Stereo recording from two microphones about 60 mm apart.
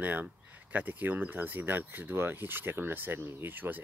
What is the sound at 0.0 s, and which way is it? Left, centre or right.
Speech, right.